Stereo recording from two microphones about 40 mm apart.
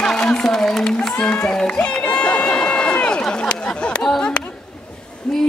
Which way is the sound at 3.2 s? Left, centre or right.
Left.